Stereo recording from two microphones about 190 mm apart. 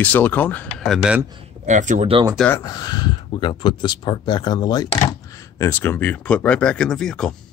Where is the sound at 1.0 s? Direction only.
5° right (ahead or behind).